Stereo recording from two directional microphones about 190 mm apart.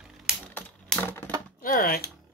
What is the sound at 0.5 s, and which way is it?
Typing, 10° left (ahead or behind).